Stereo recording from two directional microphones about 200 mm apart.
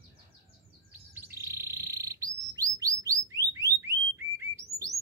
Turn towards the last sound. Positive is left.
turn(degrees=-15)  # may be behind; listen again after turning